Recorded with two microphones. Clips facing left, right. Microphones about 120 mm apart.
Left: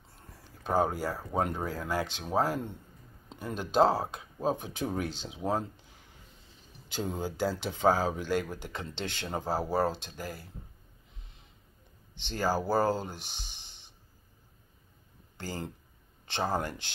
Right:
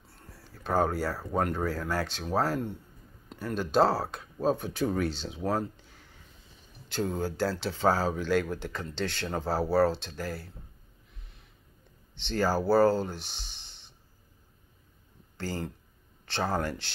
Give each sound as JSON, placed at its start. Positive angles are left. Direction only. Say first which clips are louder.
{"t": 0.1, "sound": "speech", "louder": "right 2 dB", "side_deg": 15}
{"t": 5.8, "sound": "a sound", "louder": "right 2 dB", "side_deg": 15}
{"t": 6.9, "sound": "speech", "louder": "right 3 dB", "side_deg": 15}
{"t": 12.3, "sound": "speech", "louder": "right 4 dB", "side_deg": 15}
{"t": 15.3, "sound": "speech", "louder": "right 3 dB", "side_deg": 15}